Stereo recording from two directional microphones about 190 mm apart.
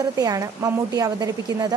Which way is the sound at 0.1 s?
20° right (ahead or behind).